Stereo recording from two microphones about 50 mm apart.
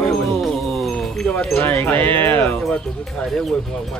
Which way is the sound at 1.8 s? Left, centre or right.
Left.